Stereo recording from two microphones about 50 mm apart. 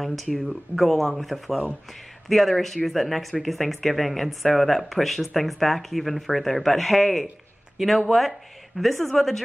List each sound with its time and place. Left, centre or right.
0.0 s speech: centre